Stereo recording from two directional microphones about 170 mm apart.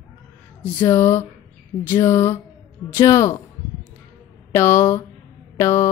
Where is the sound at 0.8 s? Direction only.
15° left (ahead or behind).